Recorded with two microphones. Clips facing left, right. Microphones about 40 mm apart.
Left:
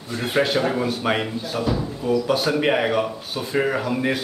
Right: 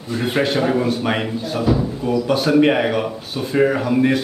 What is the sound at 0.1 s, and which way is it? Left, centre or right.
Speech, centre.